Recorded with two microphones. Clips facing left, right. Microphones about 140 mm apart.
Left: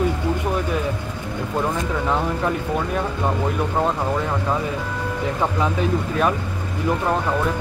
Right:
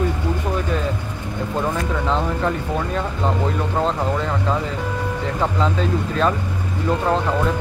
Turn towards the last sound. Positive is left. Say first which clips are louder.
# even
turn(degrees=15)  # may be behind; listen again after turning